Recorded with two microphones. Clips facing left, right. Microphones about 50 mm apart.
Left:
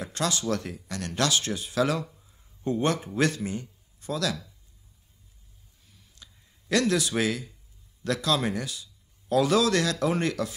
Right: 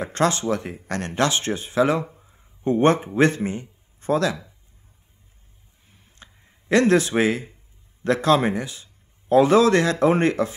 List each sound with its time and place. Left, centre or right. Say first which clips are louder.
0.0 s speech: right 8 dB; right
0.8 s speech: right 7 dB; right
1.1 s speech: right 4 dB; right
5.9 s a sound: right 5 dB; right
8.0 s speech: right 8 dB; right